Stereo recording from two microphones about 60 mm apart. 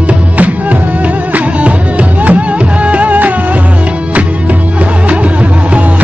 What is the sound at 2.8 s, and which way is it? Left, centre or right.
Music, right.